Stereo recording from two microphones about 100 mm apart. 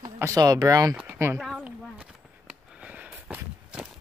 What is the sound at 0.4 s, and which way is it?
Speech, 35° right (ahead or behind).